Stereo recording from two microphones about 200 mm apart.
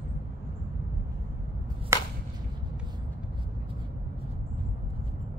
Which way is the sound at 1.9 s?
15° right (ahead or behind).